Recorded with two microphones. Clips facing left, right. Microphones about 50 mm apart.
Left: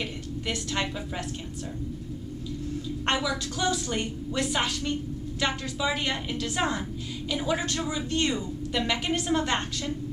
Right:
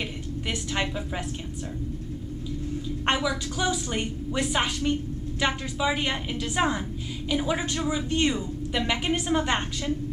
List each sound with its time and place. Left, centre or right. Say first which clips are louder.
0.5 s a woman's voice: right 1 dB; centre
3.1 s a woman's voice: right 2 dB; centre